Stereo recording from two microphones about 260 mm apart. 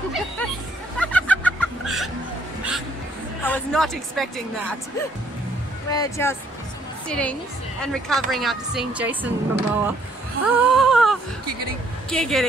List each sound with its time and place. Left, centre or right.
0.9 s music: centre
3.4 s speech: centre
5.9 s speech: centre
10.4 s a sound: centre
12.1 s speech: centre